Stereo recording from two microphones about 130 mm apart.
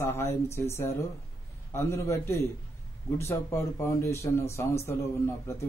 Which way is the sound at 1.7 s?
20° left (ahead or behind).